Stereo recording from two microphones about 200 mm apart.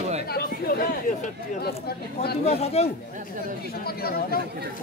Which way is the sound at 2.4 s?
30° left (ahead or behind).